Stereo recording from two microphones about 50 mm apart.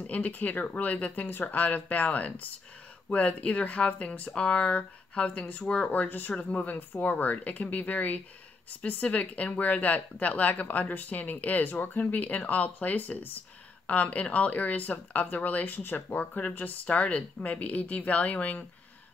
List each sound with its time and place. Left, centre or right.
0.0 s speech: left
5.9 s speech: left